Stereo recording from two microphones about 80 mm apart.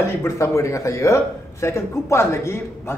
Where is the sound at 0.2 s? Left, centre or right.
Left.